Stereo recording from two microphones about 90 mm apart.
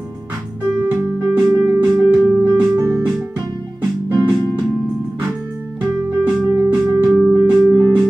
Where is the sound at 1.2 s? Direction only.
15° right (ahead or behind).